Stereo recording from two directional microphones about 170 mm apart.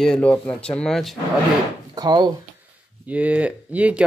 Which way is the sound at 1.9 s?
25° right (ahead or behind).